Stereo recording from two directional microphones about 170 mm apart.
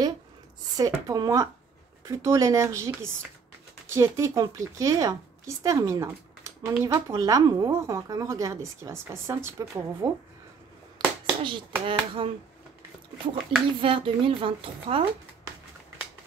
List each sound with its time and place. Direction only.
0.7 s a woman's voice: 20° right (ahead or behind)
11.0 s a sound: 25° right (ahead or behind)
11.8 s a woman's voice: 30° right (ahead or behind)
13.3 s a woman's voice: 30° right (ahead or behind)